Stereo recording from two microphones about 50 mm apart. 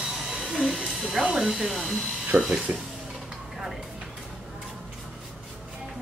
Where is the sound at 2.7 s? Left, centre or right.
Right.